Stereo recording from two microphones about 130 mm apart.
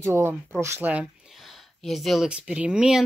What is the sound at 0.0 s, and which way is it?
Speech, 20° right (ahead or behind).